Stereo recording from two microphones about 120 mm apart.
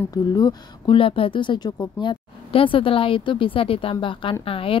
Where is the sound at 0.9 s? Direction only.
50° left (ahead or behind).